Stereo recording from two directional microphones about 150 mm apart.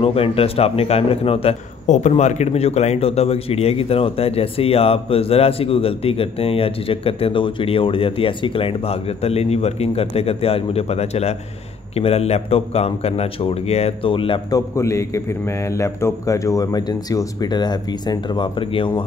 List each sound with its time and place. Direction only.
0.0 s a man's voice: 40° left (ahead or behind)
14.5 s a man's voice: 20° left (ahead or behind)